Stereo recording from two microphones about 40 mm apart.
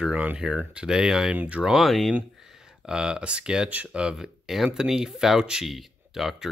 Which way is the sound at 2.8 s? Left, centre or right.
Centre.